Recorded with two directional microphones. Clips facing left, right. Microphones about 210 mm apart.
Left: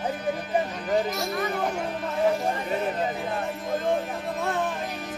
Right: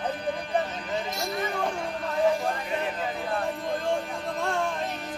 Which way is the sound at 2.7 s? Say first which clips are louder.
Left 3 dB; 40° left (ahead or behind).